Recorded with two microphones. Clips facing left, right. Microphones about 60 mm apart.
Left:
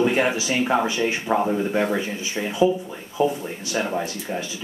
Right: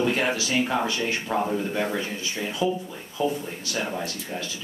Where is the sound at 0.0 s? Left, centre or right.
Centre.